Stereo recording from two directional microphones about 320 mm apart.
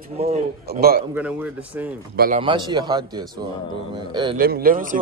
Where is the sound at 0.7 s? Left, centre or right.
Right.